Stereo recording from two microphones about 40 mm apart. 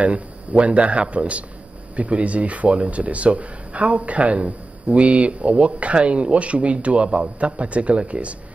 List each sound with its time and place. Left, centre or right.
0.0 s speech: right